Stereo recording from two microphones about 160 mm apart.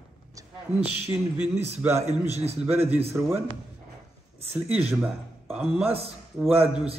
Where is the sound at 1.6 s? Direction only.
15° right (ahead or behind).